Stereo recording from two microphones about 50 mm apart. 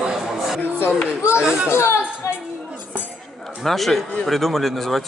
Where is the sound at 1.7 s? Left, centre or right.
Left.